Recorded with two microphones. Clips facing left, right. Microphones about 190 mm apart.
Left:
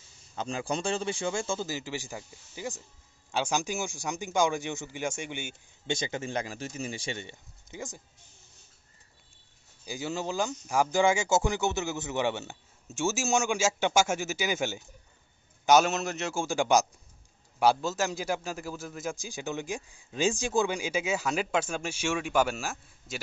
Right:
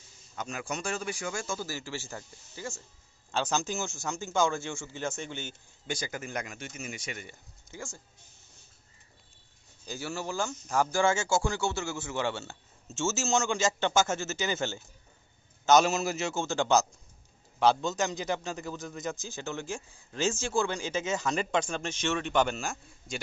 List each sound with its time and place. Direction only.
0.4 s a man's voice: 30° left (ahead or behind); by 5.6 s 15° left (ahead or behind)
5.9 s a man's voice: 25° left (ahead or behind)
9.8 s a man's voice: 15° left (ahead or behind); by 16.3 s centre (ahead or behind)
16.3 s a man's voice: 10° left (ahead or behind)